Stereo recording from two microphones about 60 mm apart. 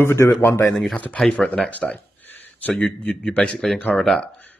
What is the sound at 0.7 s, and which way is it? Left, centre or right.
Speech, centre.